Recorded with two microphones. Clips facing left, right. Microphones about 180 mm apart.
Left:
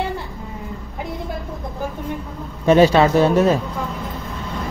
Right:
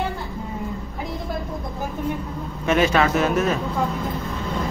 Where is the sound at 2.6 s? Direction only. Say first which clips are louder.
Left 6 dB; 30° left (ahead or behind).